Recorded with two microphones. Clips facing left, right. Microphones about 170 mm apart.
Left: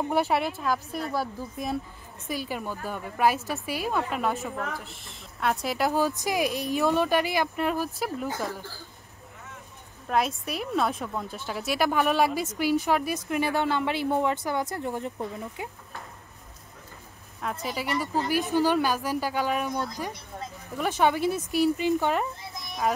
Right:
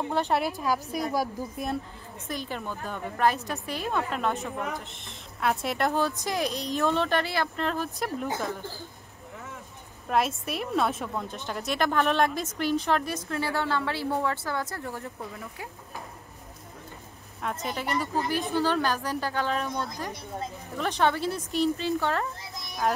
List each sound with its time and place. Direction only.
0.1 s speech: 5° left (ahead or behind)
0.5 s a woman's voice: 10° right (ahead or behind)
2.2 s speech: 10° left (ahead or behind)
10.0 s speech: centre (ahead or behind); by 15.7 s 20° left (ahead or behind)
17.4 s speech: centre (ahead or behind)
17.9 s speech: 10° left (ahead or behind)